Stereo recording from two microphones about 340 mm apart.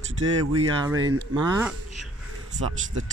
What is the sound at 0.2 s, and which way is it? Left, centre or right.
Speech, right.